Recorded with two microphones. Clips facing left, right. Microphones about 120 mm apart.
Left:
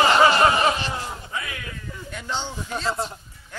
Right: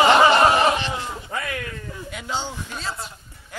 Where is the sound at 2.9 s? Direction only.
35° left (ahead or behind).